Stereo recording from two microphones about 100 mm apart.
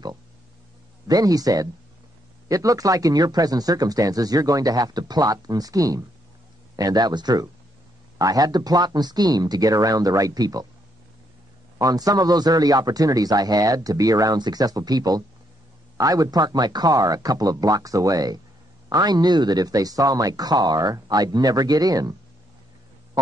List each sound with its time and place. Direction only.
1.0 s speech: 40° right (ahead or behind)
11.8 s speech: 40° right (ahead or behind)